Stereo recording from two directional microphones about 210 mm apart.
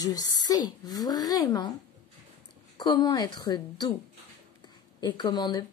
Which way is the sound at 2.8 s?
20° left (ahead or behind).